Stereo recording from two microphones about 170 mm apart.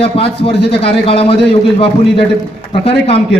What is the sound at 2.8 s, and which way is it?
Speech, 35° left (ahead or behind).